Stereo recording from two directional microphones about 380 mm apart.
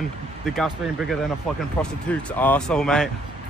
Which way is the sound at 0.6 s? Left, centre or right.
Centre.